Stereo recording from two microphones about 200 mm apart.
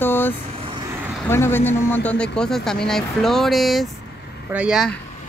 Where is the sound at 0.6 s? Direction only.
25° right (ahead or behind).